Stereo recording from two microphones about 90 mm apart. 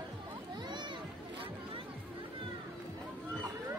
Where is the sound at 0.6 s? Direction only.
55° right (ahead or behind).